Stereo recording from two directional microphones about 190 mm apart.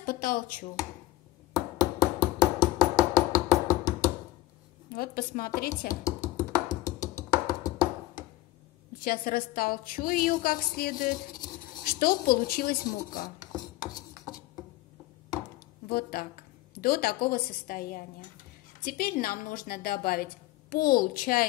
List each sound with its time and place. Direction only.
0.0 s speech: 50° left (ahead or behind)
1.8 s a sound: 20° left (ahead or behind)
2.8 s music: 20° left (ahead or behind)
4.9 s a woman's voice: 50° left (ahead or behind)
5.9 s music: 15° left (ahead or behind)
9.0 s a woman's voice: 50° left (ahead or behind)
15.9 s a woman's voice: 50° left (ahead or behind)